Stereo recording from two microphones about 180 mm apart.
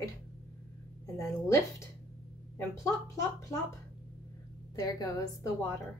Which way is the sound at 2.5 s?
15° left (ahead or behind).